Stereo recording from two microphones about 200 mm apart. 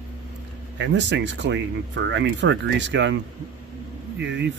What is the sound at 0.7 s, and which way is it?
Speech, 65° right (ahead or behind).